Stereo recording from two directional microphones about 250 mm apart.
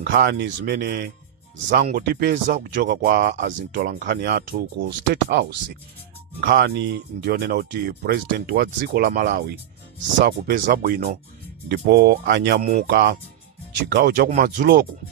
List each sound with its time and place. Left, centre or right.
0.0 s speech: right